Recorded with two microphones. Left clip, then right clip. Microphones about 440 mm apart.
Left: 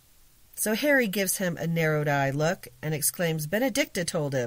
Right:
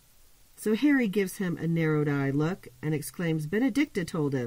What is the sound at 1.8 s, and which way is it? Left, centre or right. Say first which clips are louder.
Speech: left 3 dB; left.